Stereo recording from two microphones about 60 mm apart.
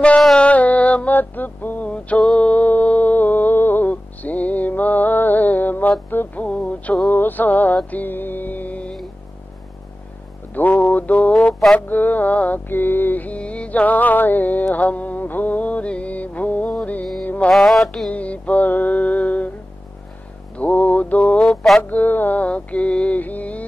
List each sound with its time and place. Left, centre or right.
0.4 s music: left
10.5 s mantra: left
11.9 s music: left
17.2 s mantra: left
17.5 s mantra: centre
18.1 s music: left
20.5 s mantra: left
21.5 s music: centre
21.8 s mantra: left